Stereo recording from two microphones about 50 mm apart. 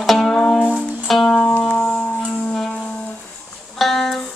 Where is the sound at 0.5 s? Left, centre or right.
Left.